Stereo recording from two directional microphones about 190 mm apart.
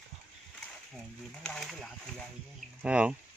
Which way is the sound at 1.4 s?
Centre (ahead or behind).